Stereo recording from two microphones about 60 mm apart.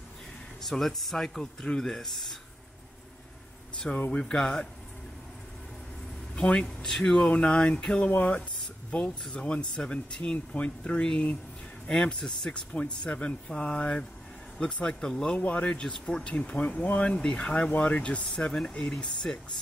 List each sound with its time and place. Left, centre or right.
0.6 s speech: centre
3.7 s a sound: centre
4.2 s speech: centre
6.3 s a man's voice: centre
7.2 s speech: centre
8.1 s speech: left; by 19.4 s centre